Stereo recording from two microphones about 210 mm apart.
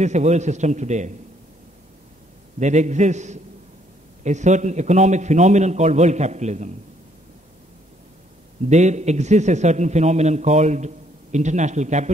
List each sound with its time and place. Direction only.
0.0 s a man's voice: 35° right (ahead or behind)
2.6 s a man's voice: 35° right (ahead or behind)
8.6 s a man's voice: 35° right (ahead or behind)